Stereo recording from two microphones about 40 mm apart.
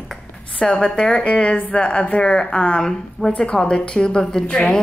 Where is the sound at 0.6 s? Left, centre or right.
Centre.